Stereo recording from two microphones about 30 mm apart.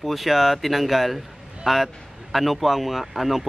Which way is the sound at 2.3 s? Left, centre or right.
Centre.